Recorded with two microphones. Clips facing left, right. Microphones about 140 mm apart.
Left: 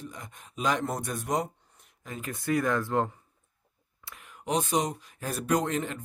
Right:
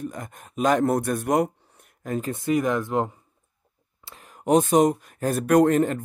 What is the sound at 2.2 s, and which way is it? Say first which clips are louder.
Speech: right 4 dB; 25° right (ahead or behind).